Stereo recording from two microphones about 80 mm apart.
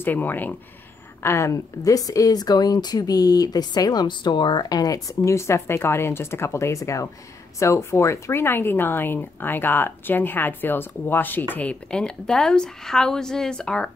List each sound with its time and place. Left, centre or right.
0.0 s speech: left
1.2 s speech: left
11.9 s speech: centre